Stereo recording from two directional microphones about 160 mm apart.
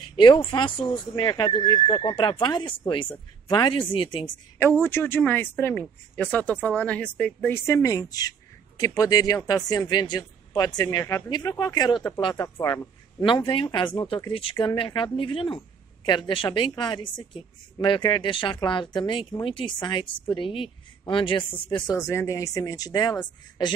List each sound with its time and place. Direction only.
0.1 s speech: 30° left (ahead or behind)
4.6 s speech: 15° left (ahead or behind)
13.5 s speech: 30° left (ahead or behind)